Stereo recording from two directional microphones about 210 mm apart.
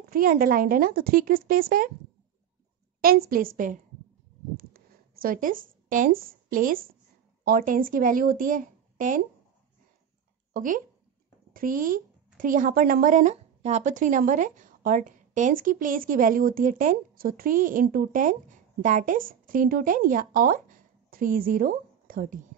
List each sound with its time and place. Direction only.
0.1 s a woman's voice: 45° right (ahead or behind)
3.0 s a woman's voice: 45° right (ahead or behind)
4.6 s a sound: 45° right (ahead or behind)
7.4 s speech: 40° right (ahead or behind)
10.5 s speech: 40° right (ahead or behind)